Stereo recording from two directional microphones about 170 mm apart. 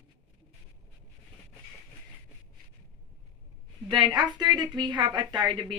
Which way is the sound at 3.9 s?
25° right (ahead or behind).